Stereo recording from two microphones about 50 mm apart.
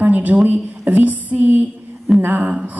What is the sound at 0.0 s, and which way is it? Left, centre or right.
Speech, right.